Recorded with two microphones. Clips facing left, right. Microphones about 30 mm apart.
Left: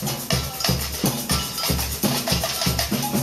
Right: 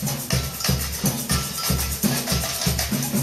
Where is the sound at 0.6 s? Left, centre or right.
Left.